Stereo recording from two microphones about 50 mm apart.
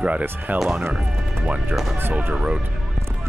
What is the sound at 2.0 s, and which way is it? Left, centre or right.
Speech, right.